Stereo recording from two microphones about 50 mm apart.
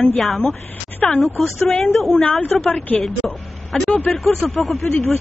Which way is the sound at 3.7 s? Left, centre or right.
Centre.